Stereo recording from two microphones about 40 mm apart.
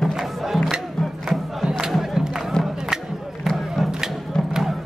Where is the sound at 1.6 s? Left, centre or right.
Centre.